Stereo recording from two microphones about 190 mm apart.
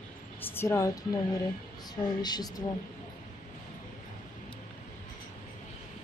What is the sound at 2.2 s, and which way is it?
Speech, 20° left (ahead or behind).